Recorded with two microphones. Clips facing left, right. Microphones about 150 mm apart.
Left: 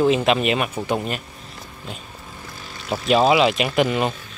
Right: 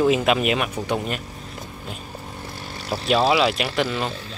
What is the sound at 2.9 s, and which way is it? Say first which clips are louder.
Speech: left 3 dB; centre (ahead or behind).